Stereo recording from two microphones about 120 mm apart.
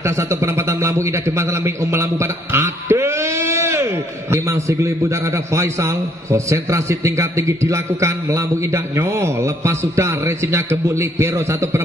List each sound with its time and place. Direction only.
0.0 s a man's voice: 20° right (ahead or behind)